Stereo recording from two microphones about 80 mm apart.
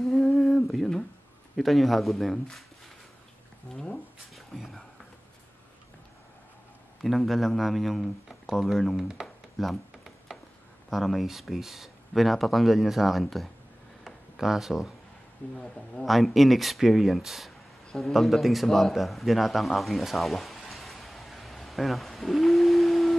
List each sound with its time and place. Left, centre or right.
0.0 s humming: centre
1.6 s speech: centre
3.7 s speech: centre
7.0 s speech: centre
9.0 s music: centre
10.9 s speech: centre
14.0 s a sound: centre
15.5 s speech: centre
16.1 s a man's voice: centre